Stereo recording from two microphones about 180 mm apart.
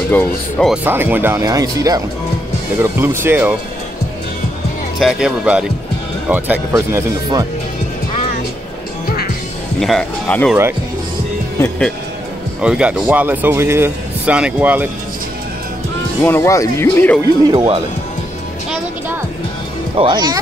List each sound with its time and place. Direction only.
0.1 s speech: 10° left (ahead or behind)
0.8 s speech: 10° right (ahead or behind)
4.9 s speech: centre (ahead or behind)
9.8 s speech: centre (ahead or behind)
12.6 s speech: 5° right (ahead or behind)
16.2 s speech: 15° left (ahead or behind)
17.5 s speech: 25° right (ahead or behind)
20.0 s speech: 25° right (ahead or behind)